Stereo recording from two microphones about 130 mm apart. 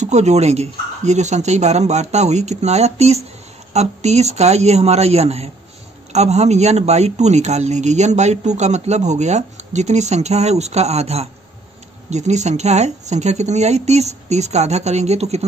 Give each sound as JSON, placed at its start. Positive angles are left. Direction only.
{"t": 0.0, "sound": "speech", "side_deg": -60}